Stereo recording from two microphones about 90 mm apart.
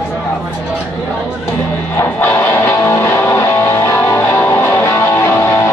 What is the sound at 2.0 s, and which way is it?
Music, 25° left (ahead or behind).